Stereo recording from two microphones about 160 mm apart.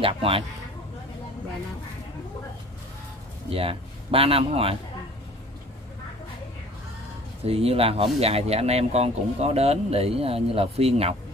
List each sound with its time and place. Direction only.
0.0 s speech: 35° right (ahead or behind)
3.4 s speech: 35° right (ahead or behind)
7.4 s speech: 35° right (ahead or behind)